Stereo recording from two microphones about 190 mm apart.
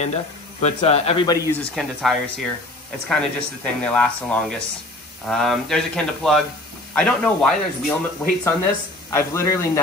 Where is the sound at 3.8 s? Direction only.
5° left (ahead or behind).